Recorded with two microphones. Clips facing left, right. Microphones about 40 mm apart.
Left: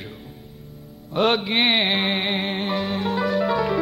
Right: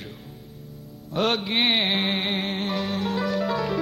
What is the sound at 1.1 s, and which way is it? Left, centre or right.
Music, centre.